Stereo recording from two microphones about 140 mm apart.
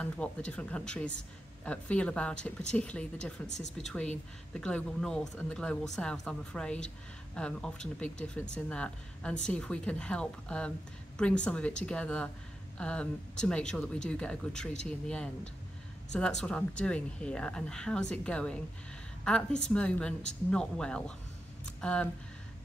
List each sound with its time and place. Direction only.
0.0 s speech: 10° left (ahead or behind)
3.4 s speech: 55° left (ahead or behind)
3.7 s speech: 5° left (ahead or behind)